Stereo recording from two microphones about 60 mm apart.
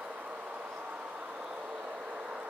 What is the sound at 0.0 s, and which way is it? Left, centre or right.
Vehicle, centre.